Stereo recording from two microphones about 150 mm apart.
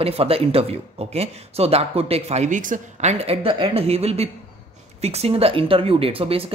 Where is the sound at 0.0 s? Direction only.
40° right (ahead or behind).